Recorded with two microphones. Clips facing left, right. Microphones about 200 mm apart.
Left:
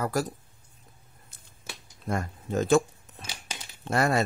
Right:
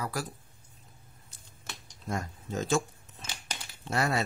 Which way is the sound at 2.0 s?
60° left (ahead or behind).